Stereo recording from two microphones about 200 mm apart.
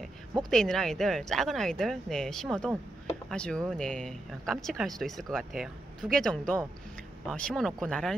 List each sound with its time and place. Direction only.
0.5 s a woman's voice: centre (ahead or behind)